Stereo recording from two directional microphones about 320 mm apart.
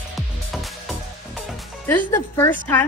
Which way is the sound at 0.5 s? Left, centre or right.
Centre.